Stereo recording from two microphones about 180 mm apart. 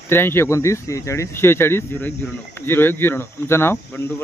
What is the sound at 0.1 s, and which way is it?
Speech, 15° left (ahead or behind).